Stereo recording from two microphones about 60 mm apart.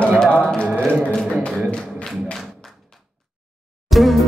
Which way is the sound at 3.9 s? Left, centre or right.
Centre.